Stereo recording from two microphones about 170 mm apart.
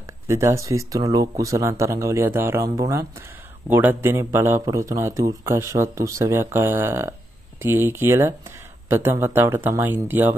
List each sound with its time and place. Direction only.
0.0 s speech: 15° right (ahead or behind)